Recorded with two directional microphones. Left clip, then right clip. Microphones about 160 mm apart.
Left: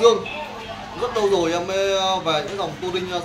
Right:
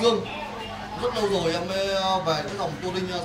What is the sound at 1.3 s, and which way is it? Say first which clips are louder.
Speech: left 5 dB; 5° left (ahead or behind).